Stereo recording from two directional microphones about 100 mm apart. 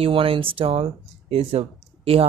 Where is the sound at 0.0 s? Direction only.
65° right (ahead or behind).